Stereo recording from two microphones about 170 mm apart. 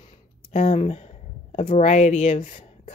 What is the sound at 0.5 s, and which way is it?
Speech, 45° left (ahead or behind).